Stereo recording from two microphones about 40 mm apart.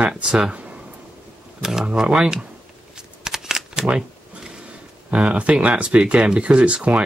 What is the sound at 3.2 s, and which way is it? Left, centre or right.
Shuffling cards, centre.